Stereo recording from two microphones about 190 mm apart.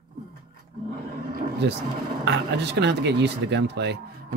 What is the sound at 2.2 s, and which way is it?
Speech, 65° right (ahead or behind).